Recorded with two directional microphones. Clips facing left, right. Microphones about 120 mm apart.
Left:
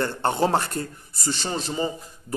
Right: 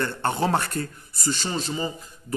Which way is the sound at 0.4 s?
25° left (ahead or behind).